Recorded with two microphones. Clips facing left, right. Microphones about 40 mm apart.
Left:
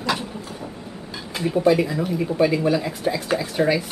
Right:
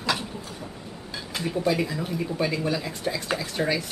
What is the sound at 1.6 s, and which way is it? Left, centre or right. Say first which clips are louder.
Speech: left 8 dB; centre.